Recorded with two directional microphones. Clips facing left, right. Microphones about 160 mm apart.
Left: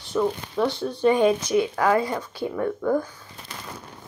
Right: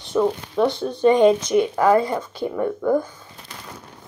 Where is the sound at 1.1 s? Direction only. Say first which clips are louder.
Right 4 dB; 5° left (ahead or behind).